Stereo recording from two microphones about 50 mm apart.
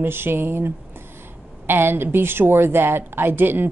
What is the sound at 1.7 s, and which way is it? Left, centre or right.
A woman's voice, right.